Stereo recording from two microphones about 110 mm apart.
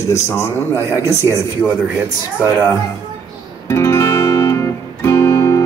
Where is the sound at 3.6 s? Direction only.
25° left (ahead or behind).